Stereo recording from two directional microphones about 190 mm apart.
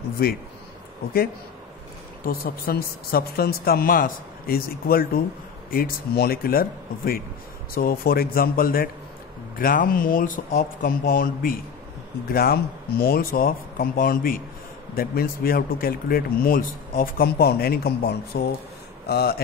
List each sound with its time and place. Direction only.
0.2 s speech: 50° left (ahead or behind)
2.2 s speech: 50° left (ahead or behind)